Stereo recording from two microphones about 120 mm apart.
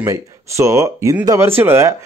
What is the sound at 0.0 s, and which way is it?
Speech, 25° right (ahead or behind).